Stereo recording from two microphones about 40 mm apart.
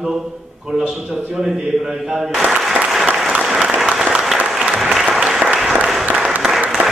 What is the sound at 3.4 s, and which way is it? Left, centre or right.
Applause, centre.